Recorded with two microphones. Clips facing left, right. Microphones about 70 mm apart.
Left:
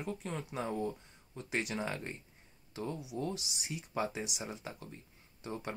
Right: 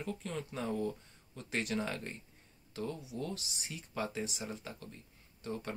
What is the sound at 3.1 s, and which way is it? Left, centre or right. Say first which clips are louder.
Speech: left 2 dB; left.